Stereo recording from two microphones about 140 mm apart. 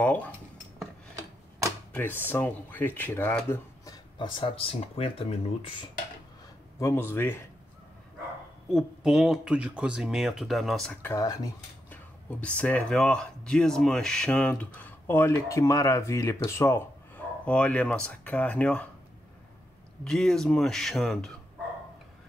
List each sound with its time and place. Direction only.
0.0 s speech: 10° left (ahead or behind)
2.0 s speech: 15° left (ahead or behind); by 5.9 s 40° left (ahead or behind)
6.8 s speech: 20° left (ahead or behind)
8.6 s speech: 5° right (ahead or behind)
10.9 s speech: 15° left (ahead or behind)
11.9 s speech: 10° left (ahead or behind)
17.5 s speech: 10° left (ahead or behind)
20.0 s speech: 5° left (ahead or behind)